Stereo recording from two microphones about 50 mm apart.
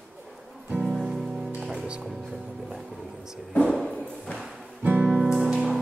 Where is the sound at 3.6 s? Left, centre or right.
Centre.